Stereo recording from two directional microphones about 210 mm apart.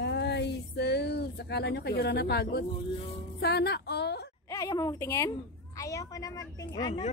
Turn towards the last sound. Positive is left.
turn(degrees=20)  # may be behind; listen again after turning